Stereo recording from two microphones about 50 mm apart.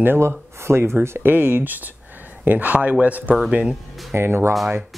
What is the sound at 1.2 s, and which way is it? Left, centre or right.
Speech, right.